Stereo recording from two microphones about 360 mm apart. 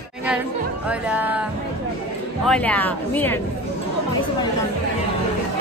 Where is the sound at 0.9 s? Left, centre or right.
Centre.